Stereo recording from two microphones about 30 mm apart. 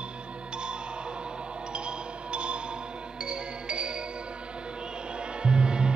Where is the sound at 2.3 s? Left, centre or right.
Right.